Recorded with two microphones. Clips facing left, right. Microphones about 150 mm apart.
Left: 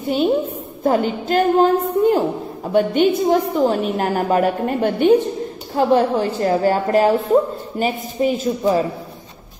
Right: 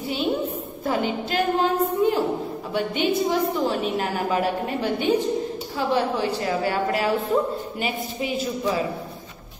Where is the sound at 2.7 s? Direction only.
50° left (ahead or behind).